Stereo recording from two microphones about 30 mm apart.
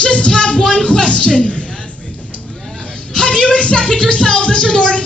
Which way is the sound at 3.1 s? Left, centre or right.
Left.